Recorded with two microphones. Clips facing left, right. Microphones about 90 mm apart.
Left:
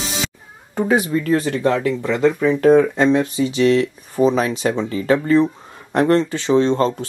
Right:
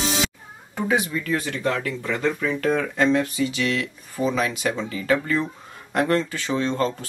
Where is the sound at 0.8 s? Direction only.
40° left (ahead or behind).